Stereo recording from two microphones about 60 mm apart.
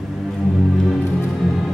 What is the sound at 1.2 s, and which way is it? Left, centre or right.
Music, centre.